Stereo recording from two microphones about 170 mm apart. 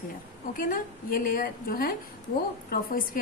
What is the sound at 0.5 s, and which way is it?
A woman's voice, 50° left (ahead or behind).